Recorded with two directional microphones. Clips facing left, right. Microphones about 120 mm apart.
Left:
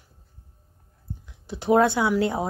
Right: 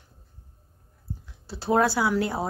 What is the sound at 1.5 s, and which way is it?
Speech, 15° left (ahead or behind).